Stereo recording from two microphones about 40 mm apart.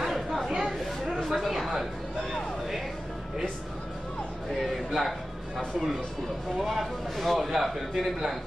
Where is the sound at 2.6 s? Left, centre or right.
Centre.